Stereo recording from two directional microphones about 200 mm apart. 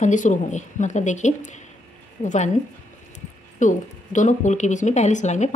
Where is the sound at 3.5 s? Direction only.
40° left (ahead or behind).